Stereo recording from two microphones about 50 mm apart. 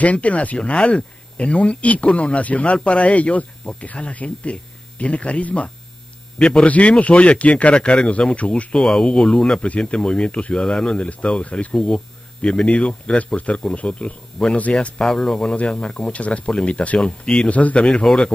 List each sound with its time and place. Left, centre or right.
0.0 s speech: left
8.8 s speech: centre; by 11.7 s left
11.7 s speech: centre
15.0 s speech: centre
17.5 s speech: left
17.7 s speech: centre
18.0 s speech: centre